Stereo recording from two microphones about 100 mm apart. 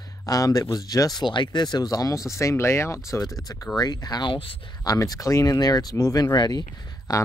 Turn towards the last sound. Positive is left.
turn(degrees=40)  # may be behind; listen again after turning